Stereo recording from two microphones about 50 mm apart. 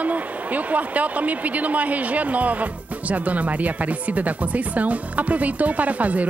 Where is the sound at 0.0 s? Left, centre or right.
Right.